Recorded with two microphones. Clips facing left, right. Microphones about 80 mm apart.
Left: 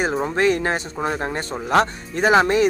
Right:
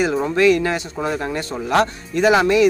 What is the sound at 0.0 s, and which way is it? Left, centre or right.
Speech, left.